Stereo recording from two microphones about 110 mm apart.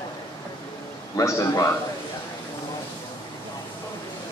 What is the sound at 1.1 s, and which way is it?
Speech, 30° left (ahead or behind).